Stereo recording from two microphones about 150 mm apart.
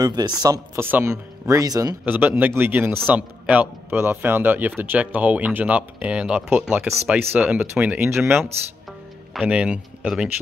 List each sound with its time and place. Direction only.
0.0 s speech: 25° right (ahead or behind)
2.0 s speech: 10° right (ahead or behind)